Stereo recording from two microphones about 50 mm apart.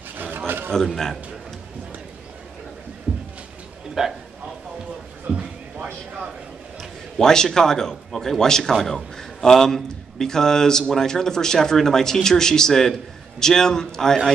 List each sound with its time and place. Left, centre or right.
0.7 s a man's voice: centre
3.1 s a sound: right
4.0 s a man's voice: centre
6.8 s a man's voice: centre